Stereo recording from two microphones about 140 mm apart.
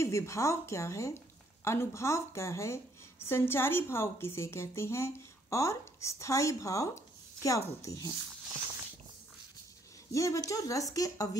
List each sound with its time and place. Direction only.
0.0 s a woman's voice: 20° left (ahead or behind)
10.1 s a woman's voice: 20° left (ahead or behind)